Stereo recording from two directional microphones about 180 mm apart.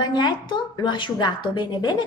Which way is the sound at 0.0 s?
25° left (ahead or behind).